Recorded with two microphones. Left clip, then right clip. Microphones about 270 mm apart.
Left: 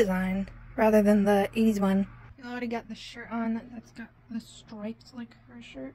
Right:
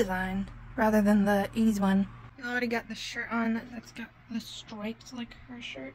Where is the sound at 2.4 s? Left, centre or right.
Centre.